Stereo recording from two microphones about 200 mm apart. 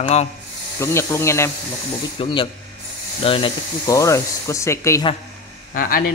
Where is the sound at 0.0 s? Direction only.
35° left (ahead or behind).